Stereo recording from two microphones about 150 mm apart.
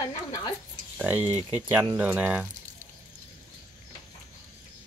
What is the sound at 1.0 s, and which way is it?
Speech, 10° right (ahead or behind).